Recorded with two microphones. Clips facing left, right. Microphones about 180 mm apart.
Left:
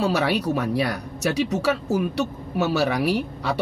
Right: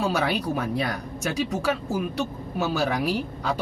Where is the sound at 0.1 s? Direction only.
70° left (ahead or behind).